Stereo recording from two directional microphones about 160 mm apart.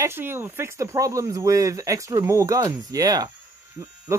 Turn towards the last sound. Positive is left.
turn(degrees=-15)  # may be behind; listen again after turning